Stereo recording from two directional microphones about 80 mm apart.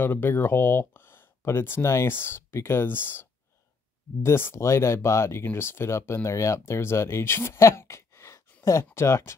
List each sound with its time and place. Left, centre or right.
0.0 s speech: left